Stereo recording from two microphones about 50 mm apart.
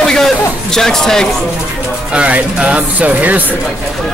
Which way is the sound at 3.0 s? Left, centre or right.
Right.